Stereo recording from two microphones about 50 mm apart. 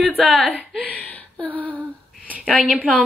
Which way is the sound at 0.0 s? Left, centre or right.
Centre.